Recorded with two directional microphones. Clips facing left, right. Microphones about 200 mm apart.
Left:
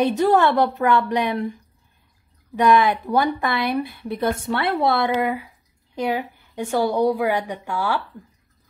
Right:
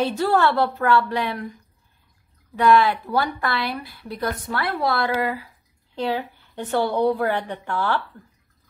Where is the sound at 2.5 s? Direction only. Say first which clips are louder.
Even; 20° left (ahead or behind).